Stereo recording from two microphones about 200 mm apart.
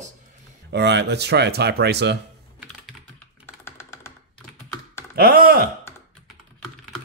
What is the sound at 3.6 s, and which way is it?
Computer keyboard, 10° left (ahead or behind).